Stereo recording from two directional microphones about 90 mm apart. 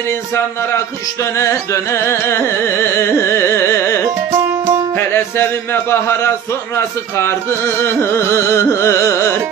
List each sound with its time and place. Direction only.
1.4 s carnatic music: 35° left (ahead or behind)
4.9 s a man's voice: 25° left (ahead or behind)
7.8 s carnatic music: 30° left (ahead or behind)